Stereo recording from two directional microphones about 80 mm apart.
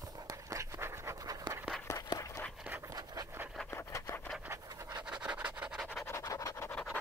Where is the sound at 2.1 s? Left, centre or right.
Left.